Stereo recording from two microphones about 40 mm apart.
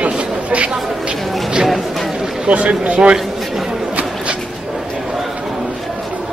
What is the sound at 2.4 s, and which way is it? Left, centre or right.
Speech, right.